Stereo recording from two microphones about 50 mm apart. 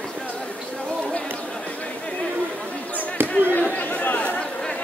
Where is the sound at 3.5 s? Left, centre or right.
Left.